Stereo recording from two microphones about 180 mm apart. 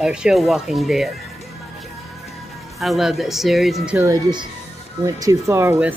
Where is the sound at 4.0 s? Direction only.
20° right (ahead or behind).